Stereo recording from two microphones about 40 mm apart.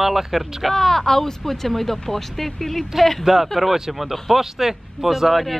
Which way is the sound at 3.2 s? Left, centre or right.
Centre.